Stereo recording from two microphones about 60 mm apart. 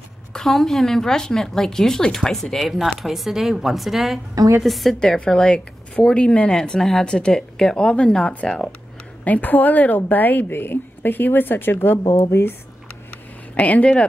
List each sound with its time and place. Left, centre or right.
0.3 s speech: centre
2.6 s speech: centre
5.0 s a woman's voice: centre; by 12.0 s left
12.1 s speech: left
13.6 s speech: left